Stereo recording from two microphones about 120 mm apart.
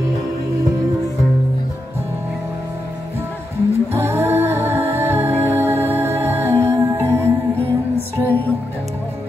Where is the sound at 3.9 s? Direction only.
20° right (ahead or behind).